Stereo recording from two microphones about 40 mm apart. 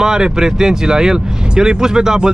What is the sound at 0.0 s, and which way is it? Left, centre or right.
Speech, centre.